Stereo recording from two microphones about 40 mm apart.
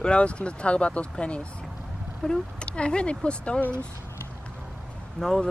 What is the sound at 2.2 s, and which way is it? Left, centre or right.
Speech, centre.